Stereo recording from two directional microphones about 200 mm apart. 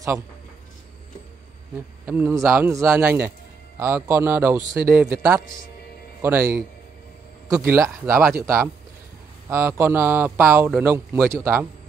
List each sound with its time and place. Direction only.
2.0 s a man's voice: 10° right (ahead or behind)
9.5 s a man's voice: 15° right (ahead or behind)